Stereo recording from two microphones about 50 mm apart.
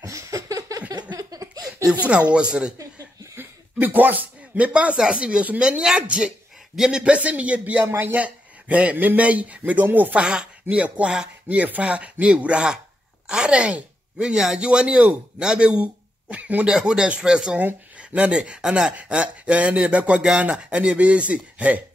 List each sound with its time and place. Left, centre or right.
0.0 s a sound: right
2.0 s speech: right
3.8 s speech: right; by 7.2 s centre
7.2 s a man's voice: right
10.2 s speech: centre
15.3 s a sound: centre
16.6 s speech: centre